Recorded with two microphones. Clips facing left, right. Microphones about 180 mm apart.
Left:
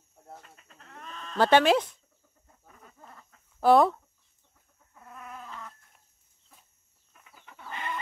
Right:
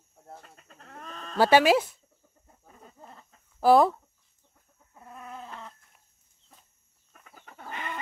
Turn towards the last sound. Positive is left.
turn(degrees=-45)  # may be behind; listen again after turning